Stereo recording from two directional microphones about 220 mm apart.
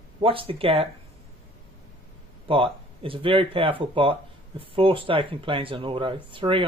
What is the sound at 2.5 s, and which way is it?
Speech, 25° right (ahead or behind).